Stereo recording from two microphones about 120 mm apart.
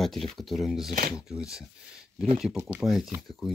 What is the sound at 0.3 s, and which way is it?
Speech, centre (ahead or behind).